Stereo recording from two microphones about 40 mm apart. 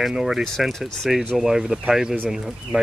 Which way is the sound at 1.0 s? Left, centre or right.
Centre.